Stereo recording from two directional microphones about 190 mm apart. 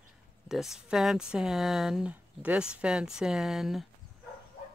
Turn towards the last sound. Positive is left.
turn(degrees=0)  # may be behind; listen again after turning